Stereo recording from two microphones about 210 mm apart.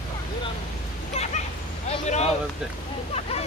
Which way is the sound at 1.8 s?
30° left (ahead or behind).